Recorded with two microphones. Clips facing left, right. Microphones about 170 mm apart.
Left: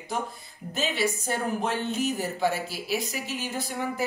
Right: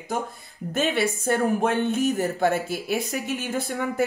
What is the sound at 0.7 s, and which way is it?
Speech, 55° right (ahead or behind).